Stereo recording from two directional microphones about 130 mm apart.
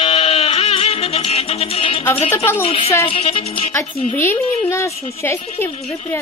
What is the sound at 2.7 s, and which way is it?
Speech, 50° left (ahead or behind).